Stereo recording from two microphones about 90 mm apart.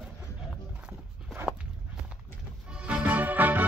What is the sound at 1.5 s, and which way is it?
Walk, 5° left (ahead or behind).